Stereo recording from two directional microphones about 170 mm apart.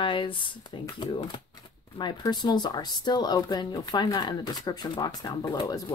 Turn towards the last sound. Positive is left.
turn(degrees=20)  # may be behind; listen again after turning